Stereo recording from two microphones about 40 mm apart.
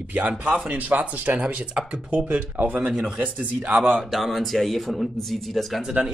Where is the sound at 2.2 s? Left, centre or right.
Right.